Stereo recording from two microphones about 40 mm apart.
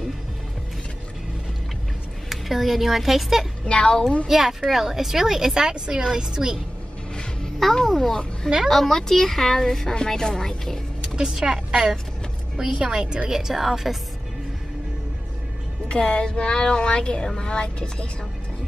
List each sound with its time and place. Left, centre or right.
2.2 s speech: centre
3.6 s a woman's voice: left
4.3 s a woman's voice: centre
7.7 s a child's voice: centre
11.1 s a woman's voice: centre
12.5 s a woman's voice: centre
13.3 s a woman's voice: centre
15.9 s a woman's voice: left